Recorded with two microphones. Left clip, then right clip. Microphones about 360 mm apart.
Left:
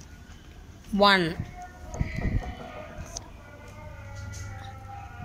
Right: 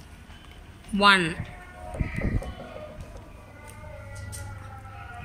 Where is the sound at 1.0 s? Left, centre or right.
Left.